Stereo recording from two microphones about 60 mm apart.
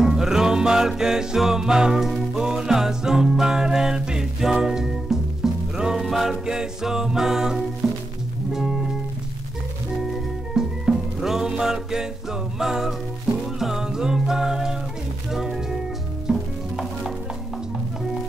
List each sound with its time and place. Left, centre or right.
0.0 s music: centre
10.0 s music: centre
16.3 s stir: centre